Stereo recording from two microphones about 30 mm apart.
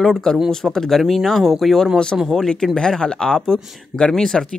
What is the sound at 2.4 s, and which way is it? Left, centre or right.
Speech, left.